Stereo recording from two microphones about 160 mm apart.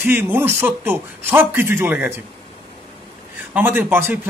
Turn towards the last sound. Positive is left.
turn(degrees=-10)  # may be behind; listen again after turning